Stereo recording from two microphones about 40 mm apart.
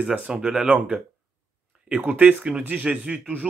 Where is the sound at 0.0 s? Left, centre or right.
Right.